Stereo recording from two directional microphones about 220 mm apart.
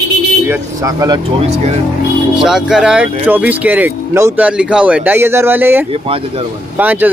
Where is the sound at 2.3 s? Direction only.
Centre (ahead or behind).